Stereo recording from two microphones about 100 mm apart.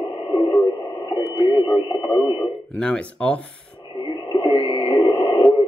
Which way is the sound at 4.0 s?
50° left (ahead or behind).